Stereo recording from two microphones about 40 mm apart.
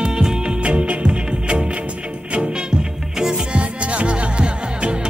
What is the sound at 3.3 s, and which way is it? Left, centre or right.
Music, right.